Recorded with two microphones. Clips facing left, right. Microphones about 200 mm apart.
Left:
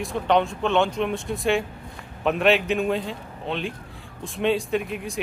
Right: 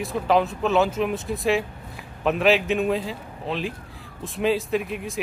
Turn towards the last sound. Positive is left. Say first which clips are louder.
# even
turn(degrees=0)  # may be behind; listen again after turning